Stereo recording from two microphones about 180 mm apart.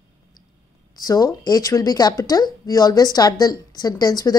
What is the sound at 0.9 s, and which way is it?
A woman's voice, 20° left (ahead or behind).